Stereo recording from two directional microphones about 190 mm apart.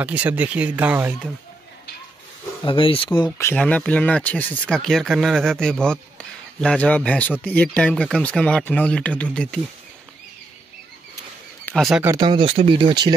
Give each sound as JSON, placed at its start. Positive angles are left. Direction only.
{"t": 0.0, "sound": "speech", "side_deg": -5}
{"t": 2.6, "sound": "speech", "side_deg": 25}
{"t": 3.3, "sound": "speech", "side_deg": 10}
{"t": 11.6, "sound": "speech", "side_deg": 0}
{"t": 12.0, "sound": "speech", "side_deg": -20}